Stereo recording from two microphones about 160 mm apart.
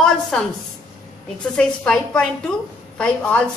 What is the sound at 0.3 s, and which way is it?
Speech, 5° left (ahead or behind).